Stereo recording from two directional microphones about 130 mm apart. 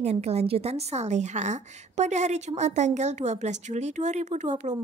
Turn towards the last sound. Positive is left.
turn(degrees=-65)  # may be behind; listen again after turning